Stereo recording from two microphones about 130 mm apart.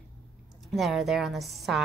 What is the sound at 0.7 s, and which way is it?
A woman's voice, centre (ahead or behind).